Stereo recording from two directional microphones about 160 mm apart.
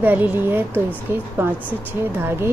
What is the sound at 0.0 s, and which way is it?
A woman's voice, 10° right (ahead or behind).